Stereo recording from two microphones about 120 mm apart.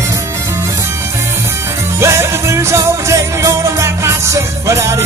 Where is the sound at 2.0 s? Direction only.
20° right (ahead or behind).